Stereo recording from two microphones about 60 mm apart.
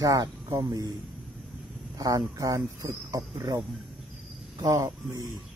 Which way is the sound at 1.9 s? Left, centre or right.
Right.